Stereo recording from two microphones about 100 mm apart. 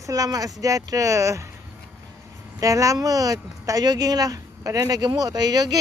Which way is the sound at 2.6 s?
35° right (ahead or behind).